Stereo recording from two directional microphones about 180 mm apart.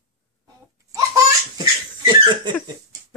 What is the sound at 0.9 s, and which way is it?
Laughter, 20° right (ahead or behind).